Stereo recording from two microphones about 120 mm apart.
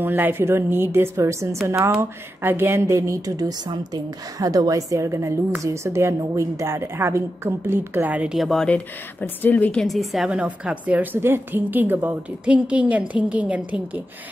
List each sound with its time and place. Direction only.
0.0 s a woman's voice: 15° right (ahead or behind)